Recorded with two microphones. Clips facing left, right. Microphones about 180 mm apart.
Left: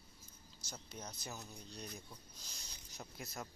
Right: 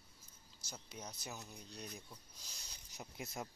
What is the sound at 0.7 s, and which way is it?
Speech, 10° right (ahead or behind).